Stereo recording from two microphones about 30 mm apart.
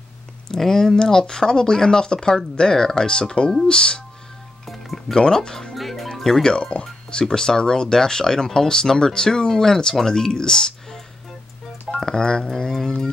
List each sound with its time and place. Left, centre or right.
0.6 s speech: centre
5.1 s speech: centre
5.4 s speech: left
5.8 s music: centre
6.4 s speech: left